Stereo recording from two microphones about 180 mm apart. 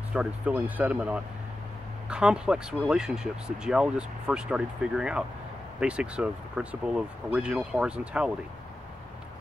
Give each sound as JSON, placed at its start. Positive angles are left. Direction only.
{"t": 0.1, "sound": "speech", "side_deg": -5}